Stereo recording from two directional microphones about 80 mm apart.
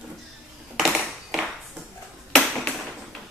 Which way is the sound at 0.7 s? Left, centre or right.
Centre.